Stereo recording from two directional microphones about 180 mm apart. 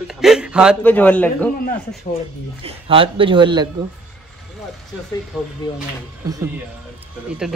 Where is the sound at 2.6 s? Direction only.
30° right (ahead or behind).